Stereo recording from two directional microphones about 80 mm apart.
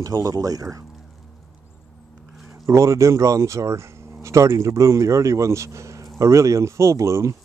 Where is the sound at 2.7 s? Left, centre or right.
Right.